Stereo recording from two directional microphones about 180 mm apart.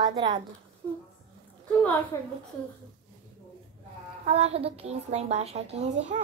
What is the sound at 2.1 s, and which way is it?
Speech, 20° left (ahead or behind).